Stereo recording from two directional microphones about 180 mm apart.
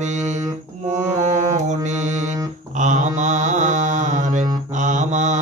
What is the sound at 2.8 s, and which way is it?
Mantra, 45° right (ahead or behind).